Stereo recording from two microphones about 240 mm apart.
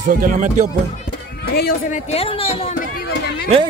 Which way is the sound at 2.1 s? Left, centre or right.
Left.